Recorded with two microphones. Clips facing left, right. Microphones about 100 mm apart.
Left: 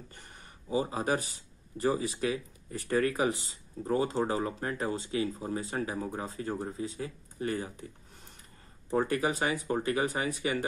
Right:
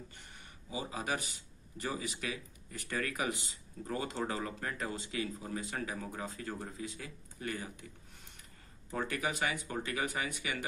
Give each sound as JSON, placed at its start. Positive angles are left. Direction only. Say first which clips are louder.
{"t": 0.1, "sound": "a sound", "louder": "left 3 dB", "side_deg": 40}
{"t": 1.8, "sound": "speech", "louder": "left 9 dB", "side_deg": 30}
{"t": 8.9, "sound": "speech", "louder": "left 8 dB", "side_deg": 35}